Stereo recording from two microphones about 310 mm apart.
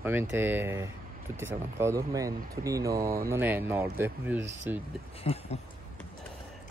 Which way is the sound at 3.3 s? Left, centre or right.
Centre.